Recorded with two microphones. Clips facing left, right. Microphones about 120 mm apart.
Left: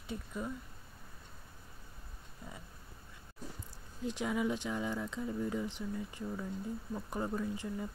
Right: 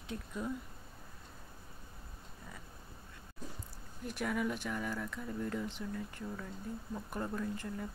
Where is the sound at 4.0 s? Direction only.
20° left (ahead or behind).